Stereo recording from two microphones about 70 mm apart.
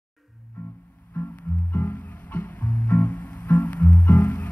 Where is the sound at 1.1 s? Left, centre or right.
Left.